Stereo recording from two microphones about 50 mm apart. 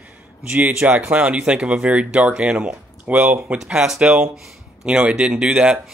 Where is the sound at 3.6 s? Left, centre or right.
Centre.